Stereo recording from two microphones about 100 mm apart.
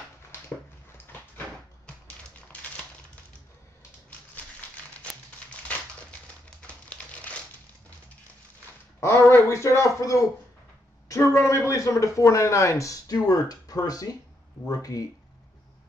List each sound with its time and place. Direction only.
4.7 s crumpling: 15° left (ahead or behind)
6.9 s crumpling: 15° left (ahead or behind)
9.0 s speech: 30° left (ahead or behind)